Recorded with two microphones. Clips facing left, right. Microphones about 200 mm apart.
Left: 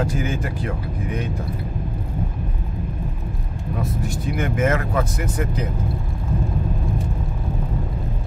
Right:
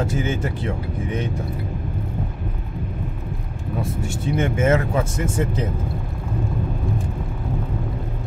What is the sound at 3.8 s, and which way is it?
Speech, 25° right (ahead or behind).